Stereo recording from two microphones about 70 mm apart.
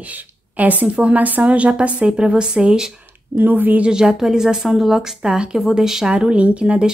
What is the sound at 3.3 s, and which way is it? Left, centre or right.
Speech, right.